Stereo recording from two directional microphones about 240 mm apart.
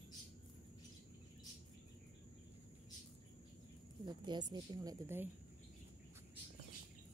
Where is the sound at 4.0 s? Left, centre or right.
Centre.